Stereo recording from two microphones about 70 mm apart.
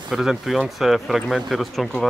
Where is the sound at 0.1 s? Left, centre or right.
Centre.